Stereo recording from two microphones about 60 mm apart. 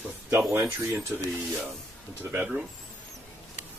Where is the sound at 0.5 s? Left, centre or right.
Right.